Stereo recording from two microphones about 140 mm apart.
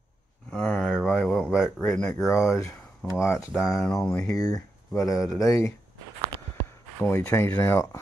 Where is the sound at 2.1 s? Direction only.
20° left (ahead or behind).